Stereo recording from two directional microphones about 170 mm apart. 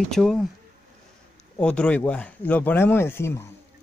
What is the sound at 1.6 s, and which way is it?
Speech, 5° left (ahead or behind).